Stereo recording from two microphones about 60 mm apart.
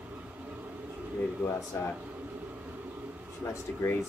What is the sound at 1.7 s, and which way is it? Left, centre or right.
Speech, left.